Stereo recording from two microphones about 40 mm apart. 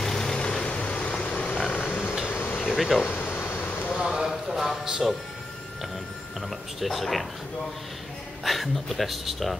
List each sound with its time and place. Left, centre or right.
0.0 s vehicle: centre; by 1.6 s left
1.6 s a sound: centre
2.7 s speech: centre
3.1 s air conditioning: left
3.9 s a sound: centre
4.3 s a sound: centre
5.0 s speech: centre
6.8 s speech: centre
8.5 s speech: centre